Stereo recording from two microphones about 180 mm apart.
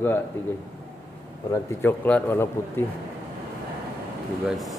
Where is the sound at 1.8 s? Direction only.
10° left (ahead or behind).